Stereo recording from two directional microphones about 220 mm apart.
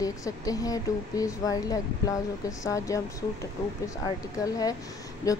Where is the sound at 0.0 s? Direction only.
15° left (ahead or behind).